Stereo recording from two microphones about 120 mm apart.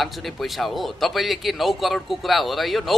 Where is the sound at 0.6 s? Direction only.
Centre (ahead or behind).